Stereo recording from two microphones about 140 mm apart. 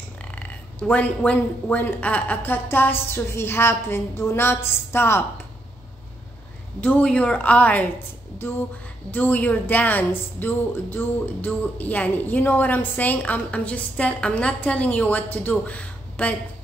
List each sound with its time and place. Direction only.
0.2 s a woman's voice: 10° left (ahead or behind)
6.8 s a woman's voice: 10° left (ahead or behind)
9.1 s a woman's voice: 10° left (ahead or behind)